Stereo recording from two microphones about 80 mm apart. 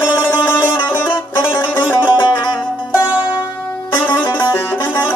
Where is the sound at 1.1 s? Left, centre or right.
Left.